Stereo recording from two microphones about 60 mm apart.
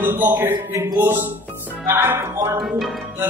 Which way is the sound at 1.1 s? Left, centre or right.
Right.